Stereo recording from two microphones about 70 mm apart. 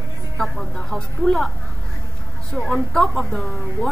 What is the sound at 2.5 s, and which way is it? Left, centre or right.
Speech, centre.